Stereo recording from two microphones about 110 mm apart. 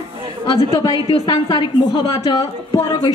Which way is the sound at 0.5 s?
35° left (ahead or behind).